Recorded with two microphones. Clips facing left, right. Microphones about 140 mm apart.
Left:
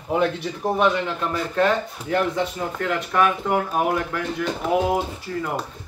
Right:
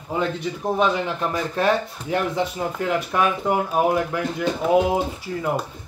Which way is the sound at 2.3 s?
15° right (ahead or behind).